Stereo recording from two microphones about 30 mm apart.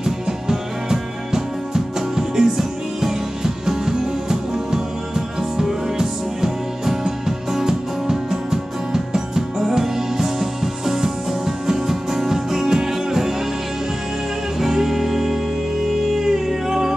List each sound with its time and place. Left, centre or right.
0.0 s music: centre
14.6 s music: centre